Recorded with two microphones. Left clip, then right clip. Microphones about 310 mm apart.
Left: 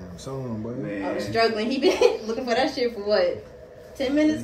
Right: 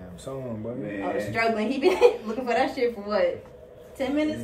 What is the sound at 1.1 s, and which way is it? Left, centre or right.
A woman's voice, right.